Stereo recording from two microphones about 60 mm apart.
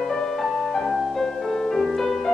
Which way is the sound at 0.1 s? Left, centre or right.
Centre.